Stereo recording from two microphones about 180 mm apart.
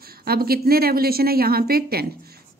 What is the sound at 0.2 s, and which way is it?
A woman's voice, 60° right (ahead or behind).